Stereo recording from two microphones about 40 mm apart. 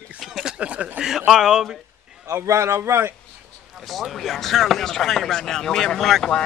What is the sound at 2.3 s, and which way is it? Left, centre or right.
Speech, right.